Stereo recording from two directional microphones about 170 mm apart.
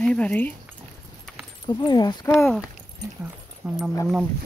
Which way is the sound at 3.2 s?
5° right (ahead or behind).